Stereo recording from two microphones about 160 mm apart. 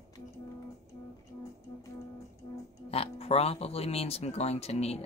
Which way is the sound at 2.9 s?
40° left (ahead or behind).